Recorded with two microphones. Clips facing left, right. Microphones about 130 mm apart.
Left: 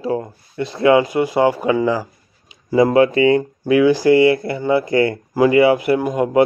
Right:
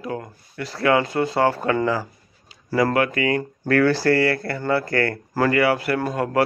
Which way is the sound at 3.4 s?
15° left (ahead or behind).